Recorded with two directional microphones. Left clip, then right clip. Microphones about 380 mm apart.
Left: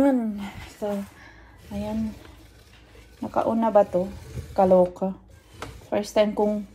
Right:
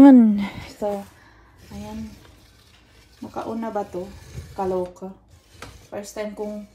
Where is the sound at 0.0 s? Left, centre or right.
Right.